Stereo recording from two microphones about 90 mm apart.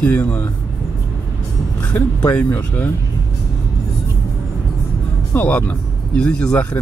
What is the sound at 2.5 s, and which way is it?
Speech, 25° left (ahead or behind).